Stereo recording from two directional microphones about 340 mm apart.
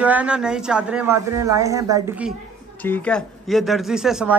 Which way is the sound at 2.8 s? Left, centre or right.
Centre.